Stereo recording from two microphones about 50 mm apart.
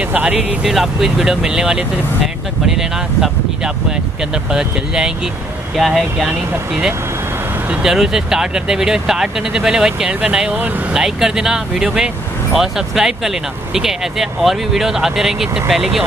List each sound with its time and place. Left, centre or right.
0.0 s speech: right
0.7 s speech: centre